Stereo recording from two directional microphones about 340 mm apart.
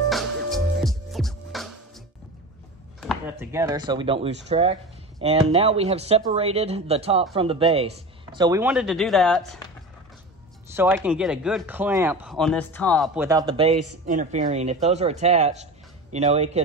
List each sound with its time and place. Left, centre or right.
0.1 s music: centre
3.0 s speech: centre
10.7 s speech: centre